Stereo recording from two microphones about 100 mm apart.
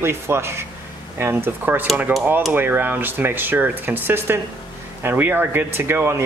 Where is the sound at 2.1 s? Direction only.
15° right (ahead or behind).